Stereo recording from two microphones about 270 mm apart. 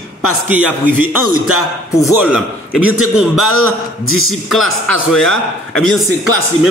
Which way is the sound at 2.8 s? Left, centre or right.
Right.